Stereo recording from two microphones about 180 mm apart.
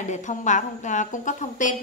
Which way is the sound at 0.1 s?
40° left (ahead or behind).